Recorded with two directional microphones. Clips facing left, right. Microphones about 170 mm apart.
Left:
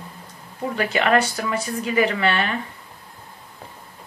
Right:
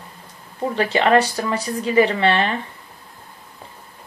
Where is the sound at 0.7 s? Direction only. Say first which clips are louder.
Right 3 dB; 30° right (ahead or behind).